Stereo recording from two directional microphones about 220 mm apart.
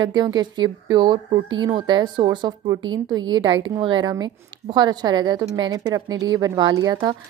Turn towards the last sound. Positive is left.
turn(degrees=-15)  # may be behind; listen again after turning